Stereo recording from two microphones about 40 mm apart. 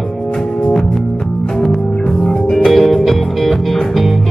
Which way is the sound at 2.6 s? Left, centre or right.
Centre.